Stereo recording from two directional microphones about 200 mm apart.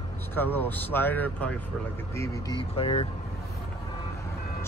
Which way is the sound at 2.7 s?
30° left (ahead or behind).